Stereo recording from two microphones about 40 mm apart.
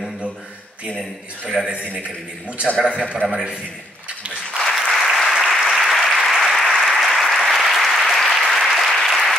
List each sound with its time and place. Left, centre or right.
1.6 s a man's voice: right
3.2 s a man's voice: centre
4.6 s applause: centre